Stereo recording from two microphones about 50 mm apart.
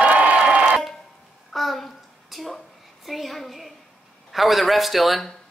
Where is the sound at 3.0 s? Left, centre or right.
Centre.